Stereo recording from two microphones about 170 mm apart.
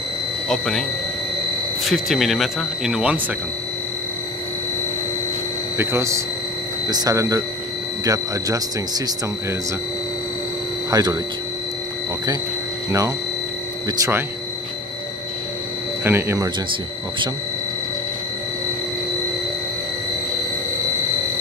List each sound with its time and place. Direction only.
0.5 s speech: centre (ahead or behind)
1.9 s speech: centre (ahead or behind)
5.8 s speech: 15° right (ahead or behind)
10.9 s speech: 25° right (ahead or behind)
13.8 s speech: 20° right (ahead or behind)
16.0 s speech: 15° right (ahead or behind)